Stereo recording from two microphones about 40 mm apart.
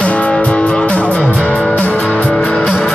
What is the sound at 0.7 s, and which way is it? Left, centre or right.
Music, centre.